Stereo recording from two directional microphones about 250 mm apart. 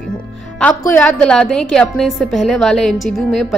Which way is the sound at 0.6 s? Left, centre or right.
Centre.